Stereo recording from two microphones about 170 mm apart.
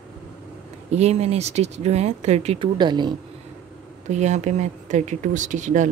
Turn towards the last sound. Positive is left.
turn(degrees=-45)  # may be behind; listen again after turning